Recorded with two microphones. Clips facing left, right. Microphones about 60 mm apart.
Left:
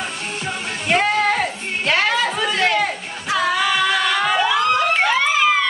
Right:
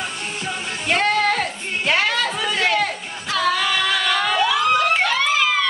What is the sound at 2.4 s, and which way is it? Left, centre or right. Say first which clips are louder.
Female singing: right 1 dB; centre.